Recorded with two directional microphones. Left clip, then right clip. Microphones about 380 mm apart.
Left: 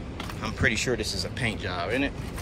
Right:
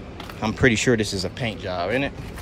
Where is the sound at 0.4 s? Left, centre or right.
Centre.